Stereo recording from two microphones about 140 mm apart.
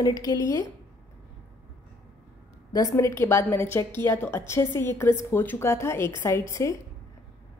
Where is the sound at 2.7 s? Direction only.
25° left (ahead or behind).